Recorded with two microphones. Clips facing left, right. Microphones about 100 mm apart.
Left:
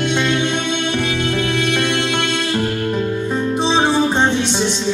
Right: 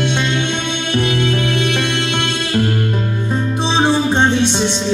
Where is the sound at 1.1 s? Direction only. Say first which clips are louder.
Right 3 dB; 15° left (ahead or behind).